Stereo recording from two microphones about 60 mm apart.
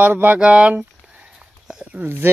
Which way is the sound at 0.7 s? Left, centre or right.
Right.